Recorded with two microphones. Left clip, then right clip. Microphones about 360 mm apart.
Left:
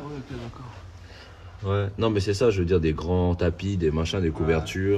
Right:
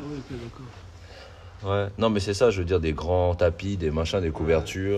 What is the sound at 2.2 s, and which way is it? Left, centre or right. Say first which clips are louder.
Speech: left 1 dB; centre.